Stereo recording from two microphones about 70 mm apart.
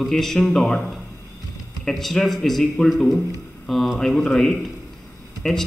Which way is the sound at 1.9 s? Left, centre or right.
Centre.